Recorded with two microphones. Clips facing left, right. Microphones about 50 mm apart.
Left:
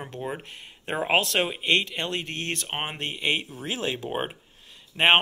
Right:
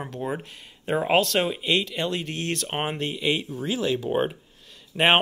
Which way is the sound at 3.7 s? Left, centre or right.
Left.